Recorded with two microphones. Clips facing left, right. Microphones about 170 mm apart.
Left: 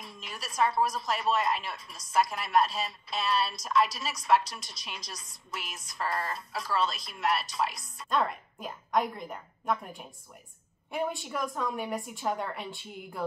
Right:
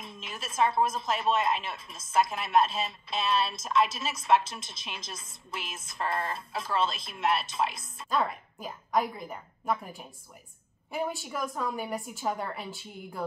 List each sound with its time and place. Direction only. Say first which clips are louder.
0.0 s a woman's voice: right 2 dB; 25° right (ahead or behind)
8.1 s a woman's voice: even; centre (ahead or behind)